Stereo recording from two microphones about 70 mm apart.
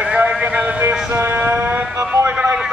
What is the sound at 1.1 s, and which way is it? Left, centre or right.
Music, right.